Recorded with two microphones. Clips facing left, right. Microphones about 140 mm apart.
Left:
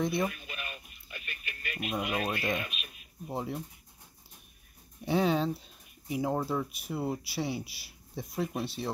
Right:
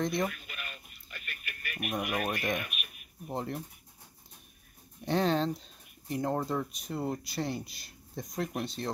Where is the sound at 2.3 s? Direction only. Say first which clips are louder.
Even; 25° left (ahead or behind).